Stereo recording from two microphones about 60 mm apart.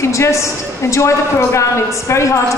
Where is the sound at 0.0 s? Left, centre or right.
Left.